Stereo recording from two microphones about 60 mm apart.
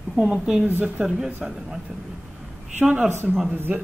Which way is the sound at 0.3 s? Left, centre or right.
Centre.